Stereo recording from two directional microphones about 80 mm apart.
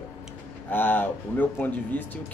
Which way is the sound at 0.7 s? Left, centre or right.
Left.